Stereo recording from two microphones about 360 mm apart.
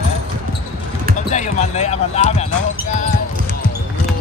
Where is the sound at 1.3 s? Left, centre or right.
Centre.